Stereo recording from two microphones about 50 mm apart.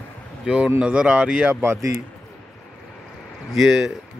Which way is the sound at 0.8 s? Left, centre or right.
Right.